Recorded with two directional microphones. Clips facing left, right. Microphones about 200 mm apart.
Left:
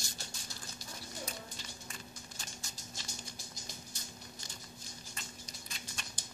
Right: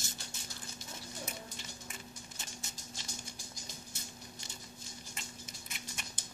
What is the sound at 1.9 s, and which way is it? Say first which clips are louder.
Music: right 1 dB; 20° right (ahead or behind).